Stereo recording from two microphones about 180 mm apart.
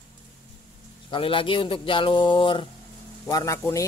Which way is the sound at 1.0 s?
30° left (ahead or behind).